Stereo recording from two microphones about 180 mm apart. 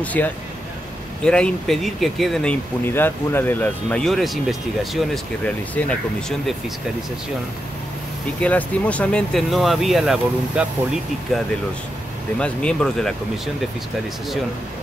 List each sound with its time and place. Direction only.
0.0 s speech: 10° left (ahead or behind)
8.4 s speech: 10° left (ahead or behind)
12.4 s speech: 5° left (ahead or behind)